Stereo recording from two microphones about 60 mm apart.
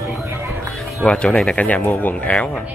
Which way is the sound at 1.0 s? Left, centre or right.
Centre.